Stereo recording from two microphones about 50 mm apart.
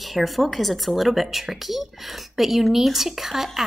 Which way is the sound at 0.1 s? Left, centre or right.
Centre.